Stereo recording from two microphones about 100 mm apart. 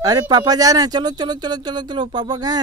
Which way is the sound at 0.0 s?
40° right (ahead or behind).